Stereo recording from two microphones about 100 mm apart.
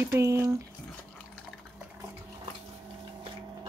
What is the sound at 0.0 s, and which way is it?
Speech, 30° right (ahead or behind).